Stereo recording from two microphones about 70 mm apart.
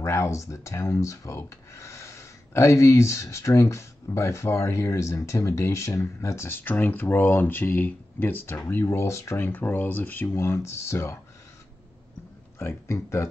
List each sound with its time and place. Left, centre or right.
0.0 s speech: left
8.8 s speech: left
9.4 s speech: left
10.3 s speech: left
12.5 s speech: left